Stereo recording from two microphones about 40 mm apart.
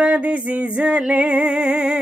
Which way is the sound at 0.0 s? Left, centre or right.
Right.